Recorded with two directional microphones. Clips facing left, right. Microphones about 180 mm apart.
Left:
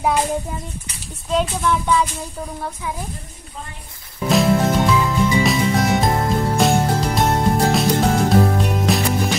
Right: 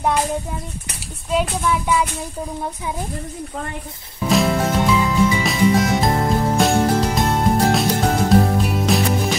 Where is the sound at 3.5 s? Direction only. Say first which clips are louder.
Right 7 dB; 60° right (ahead or behind).